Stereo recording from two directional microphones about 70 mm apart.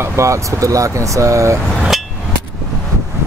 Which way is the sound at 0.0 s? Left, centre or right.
Right.